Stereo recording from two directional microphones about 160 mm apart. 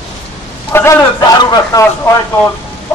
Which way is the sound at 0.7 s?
15° left (ahead or behind).